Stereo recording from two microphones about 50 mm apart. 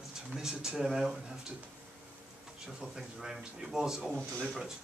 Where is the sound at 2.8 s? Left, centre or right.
Centre.